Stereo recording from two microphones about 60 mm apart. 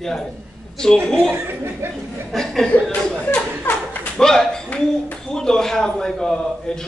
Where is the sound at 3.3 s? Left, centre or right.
Left.